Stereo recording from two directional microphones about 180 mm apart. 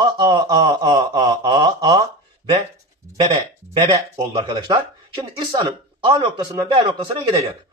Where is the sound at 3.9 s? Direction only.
25° right (ahead or behind).